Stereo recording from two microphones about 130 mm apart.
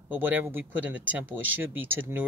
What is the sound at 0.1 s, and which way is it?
Speech, 15° right (ahead or behind).